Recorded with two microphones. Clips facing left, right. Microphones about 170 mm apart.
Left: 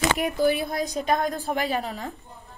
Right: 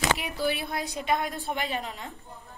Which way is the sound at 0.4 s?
45° left (ahead or behind).